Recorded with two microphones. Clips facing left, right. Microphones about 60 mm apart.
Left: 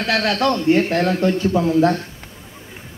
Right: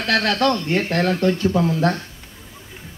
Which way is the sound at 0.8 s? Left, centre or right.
Centre.